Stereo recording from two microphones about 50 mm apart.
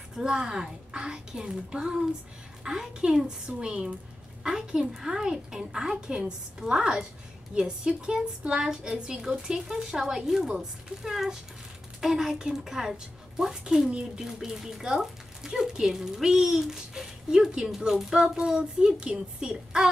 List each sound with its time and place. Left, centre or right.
0.2 s speech: centre